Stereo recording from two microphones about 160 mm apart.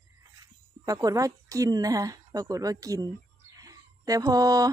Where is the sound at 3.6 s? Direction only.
20° right (ahead or behind).